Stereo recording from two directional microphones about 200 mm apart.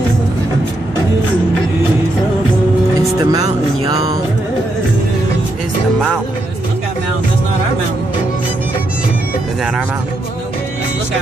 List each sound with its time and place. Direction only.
3.3 s speech: 25° right (ahead or behind)